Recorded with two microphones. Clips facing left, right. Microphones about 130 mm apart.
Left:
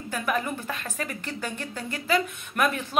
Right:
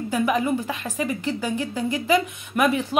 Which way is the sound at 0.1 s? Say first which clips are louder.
Right 6 dB; 10° right (ahead or behind).